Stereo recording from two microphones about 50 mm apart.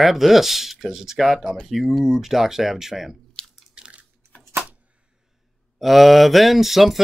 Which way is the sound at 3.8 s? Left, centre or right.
Right.